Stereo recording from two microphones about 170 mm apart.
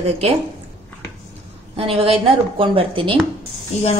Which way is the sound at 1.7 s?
35° right (ahead or behind).